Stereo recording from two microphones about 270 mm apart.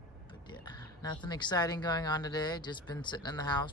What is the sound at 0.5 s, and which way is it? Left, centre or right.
Speech, centre.